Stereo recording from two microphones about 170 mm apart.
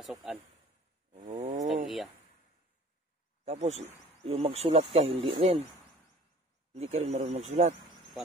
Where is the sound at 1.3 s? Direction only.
25° right (ahead or behind).